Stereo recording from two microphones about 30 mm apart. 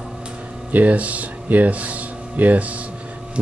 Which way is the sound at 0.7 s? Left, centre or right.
Right.